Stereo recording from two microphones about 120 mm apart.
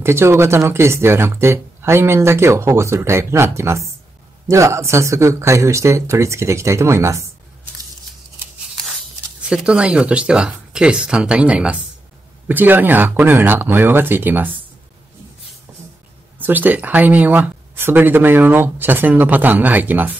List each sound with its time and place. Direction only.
0.0 s speech: 20° right (ahead or behind)
9.4 s speech: 10° right (ahead or behind)
16.3 s speech: 15° right (ahead or behind)